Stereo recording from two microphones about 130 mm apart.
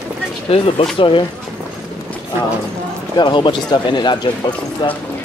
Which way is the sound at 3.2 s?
35° left (ahead or behind).